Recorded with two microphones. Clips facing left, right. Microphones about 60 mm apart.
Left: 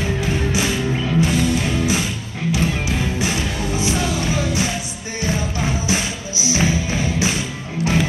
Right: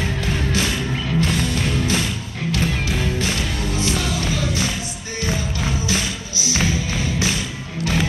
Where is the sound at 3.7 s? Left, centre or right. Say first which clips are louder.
Left 2 dB; centre.